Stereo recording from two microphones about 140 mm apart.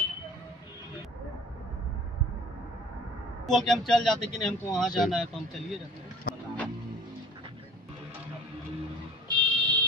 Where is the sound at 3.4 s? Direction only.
Centre (ahead or behind).